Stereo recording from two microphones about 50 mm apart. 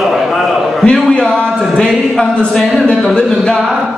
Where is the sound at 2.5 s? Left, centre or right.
Centre.